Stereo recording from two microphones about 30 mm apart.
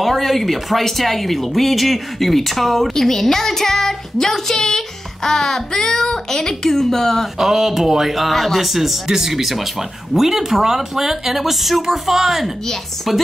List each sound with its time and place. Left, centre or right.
0.0 s speech: centre
7.3 s speech: centre
8.3 s speech: centre
8.5 s speech: centre
9.0 s speech: centre